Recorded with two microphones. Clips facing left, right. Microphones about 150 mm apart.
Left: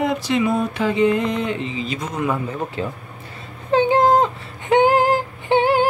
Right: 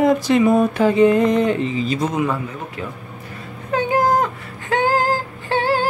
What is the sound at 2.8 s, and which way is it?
Speech, 30° left (ahead or behind).